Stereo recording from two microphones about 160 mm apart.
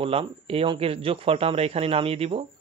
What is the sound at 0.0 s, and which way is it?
Speech, 35° right (ahead or behind).